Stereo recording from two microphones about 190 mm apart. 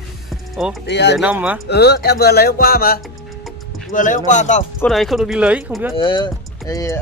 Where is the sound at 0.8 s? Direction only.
65° left (ahead or behind).